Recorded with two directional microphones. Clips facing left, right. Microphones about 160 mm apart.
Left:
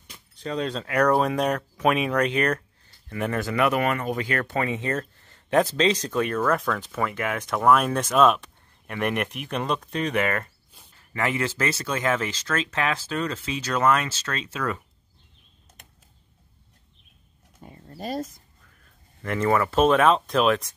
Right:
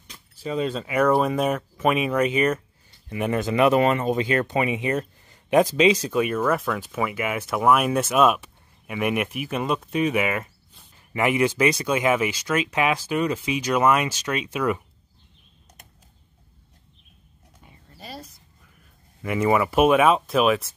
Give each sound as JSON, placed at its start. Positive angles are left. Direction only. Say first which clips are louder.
{"t": 0.0, "sound": "speech", "louder": "right 2 dB", "side_deg": 0}
{"t": 3.1, "sound": "speech", "louder": "right 3 dB", "side_deg": -15}
{"t": 17.6, "sound": "a sound", "louder": "left 9 dB", "side_deg": 45}
{"t": 19.2, "sound": "speech", "louder": "right 2 dB", "side_deg": -10}